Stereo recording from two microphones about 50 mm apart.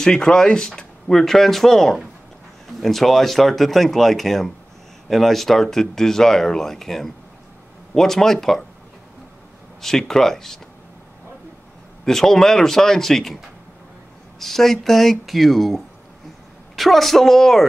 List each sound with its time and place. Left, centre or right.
0.0 s speech: centre
9.8 s speech: centre
12.0 s speech: centre
14.4 s speech: centre